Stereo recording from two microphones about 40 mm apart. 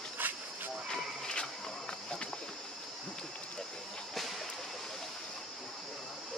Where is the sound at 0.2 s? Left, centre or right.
Right.